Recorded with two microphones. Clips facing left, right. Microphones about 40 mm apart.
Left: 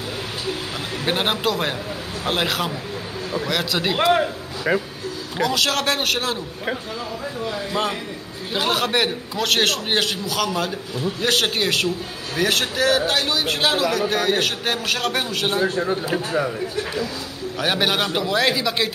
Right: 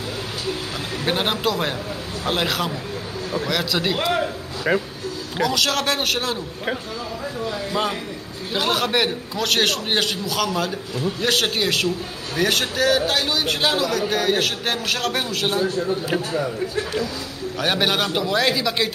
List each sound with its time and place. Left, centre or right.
1.0 s a man's voice: centre
4.7 s a man's voice: centre
15.7 s speech: left
17.6 s a man's voice: centre